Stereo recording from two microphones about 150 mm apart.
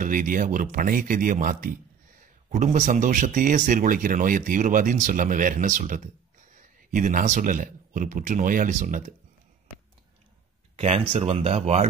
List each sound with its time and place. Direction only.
0.0 s speech: 65° right (ahead or behind)
2.5 s a man's voice: 55° right (ahead or behind)
10.8 s speech: 45° right (ahead or behind)